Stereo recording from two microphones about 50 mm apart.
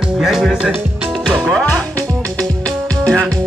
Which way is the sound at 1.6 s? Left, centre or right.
Left.